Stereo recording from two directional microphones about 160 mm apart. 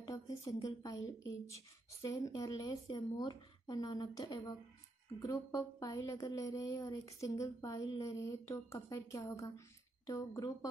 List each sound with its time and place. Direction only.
0.0 s a woman's voice: 20° left (ahead or behind)